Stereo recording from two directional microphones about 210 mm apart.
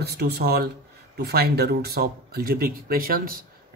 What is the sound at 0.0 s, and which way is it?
Speech, 50° right (ahead or behind).